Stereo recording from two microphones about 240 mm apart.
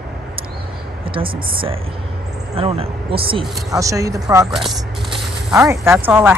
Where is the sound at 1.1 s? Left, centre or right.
Right.